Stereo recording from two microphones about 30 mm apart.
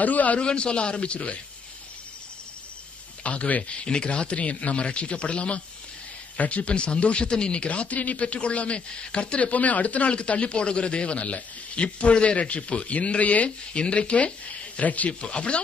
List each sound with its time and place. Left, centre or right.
0.0 s a man's voice: left
0.4 s speech: left
3.3 s a man's voice: left
3.6 s speech: left
6.3 s speech: left
9.5 s speech: left
13.8 s speech: left
14.8 s a man's voice: left
15.2 s speech: left